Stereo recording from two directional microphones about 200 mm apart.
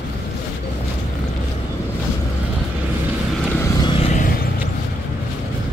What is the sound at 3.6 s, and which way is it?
Vehicle, 25° left (ahead or behind).